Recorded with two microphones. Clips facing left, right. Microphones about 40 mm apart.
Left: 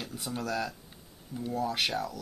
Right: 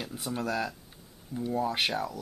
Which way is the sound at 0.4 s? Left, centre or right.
Centre.